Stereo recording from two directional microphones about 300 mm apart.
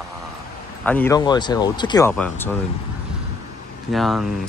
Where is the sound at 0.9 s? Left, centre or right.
Centre.